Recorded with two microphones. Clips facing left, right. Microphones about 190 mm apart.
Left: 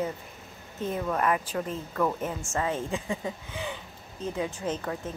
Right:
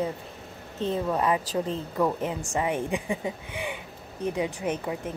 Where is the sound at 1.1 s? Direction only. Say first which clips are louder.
Right 2 dB; 15° right (ahead or behind).